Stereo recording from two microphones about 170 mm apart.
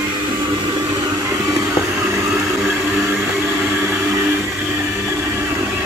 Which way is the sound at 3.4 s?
15° right (ahead or behind).